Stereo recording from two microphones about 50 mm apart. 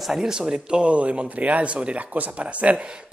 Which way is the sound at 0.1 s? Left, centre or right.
Centre.